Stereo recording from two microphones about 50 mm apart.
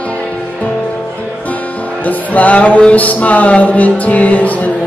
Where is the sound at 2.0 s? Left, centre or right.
Left.